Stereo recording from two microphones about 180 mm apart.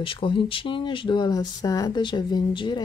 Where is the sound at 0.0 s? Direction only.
30° left (ahead or behind).